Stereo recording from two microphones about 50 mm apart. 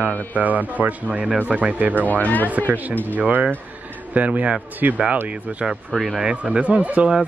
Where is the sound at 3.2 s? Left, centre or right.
Right.